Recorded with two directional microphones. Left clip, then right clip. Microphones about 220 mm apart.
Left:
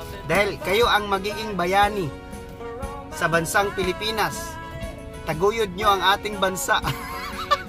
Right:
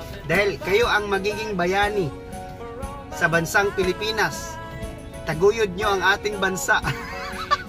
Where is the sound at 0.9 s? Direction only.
15° left (ahead or behind).